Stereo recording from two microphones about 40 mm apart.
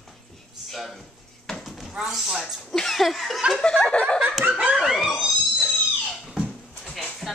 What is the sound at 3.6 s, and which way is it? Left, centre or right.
Snicker, left.